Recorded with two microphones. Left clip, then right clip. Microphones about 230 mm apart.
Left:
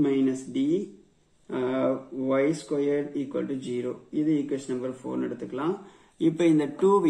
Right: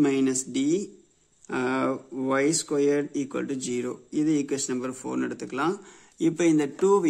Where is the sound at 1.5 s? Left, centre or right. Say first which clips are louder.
Even; right.